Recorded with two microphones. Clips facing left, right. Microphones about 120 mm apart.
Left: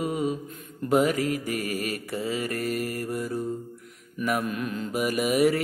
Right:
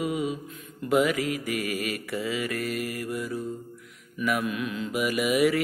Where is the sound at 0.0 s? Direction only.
40° left (ahead or behind).